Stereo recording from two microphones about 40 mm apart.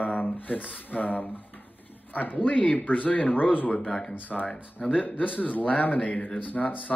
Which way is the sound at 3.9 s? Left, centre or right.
Left.